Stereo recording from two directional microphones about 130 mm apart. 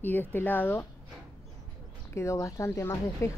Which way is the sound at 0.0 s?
15° left (ahead or behind).